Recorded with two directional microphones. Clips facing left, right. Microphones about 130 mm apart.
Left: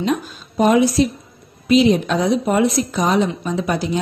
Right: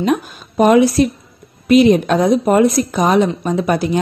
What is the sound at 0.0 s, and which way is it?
A woman's voice, 60° right (ahead or behind).